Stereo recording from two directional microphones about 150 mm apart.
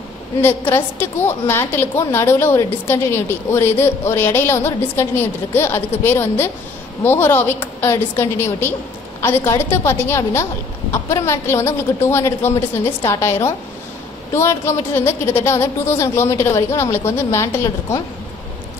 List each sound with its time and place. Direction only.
0.4 s a woman's voice: 15° left (ahead or behind)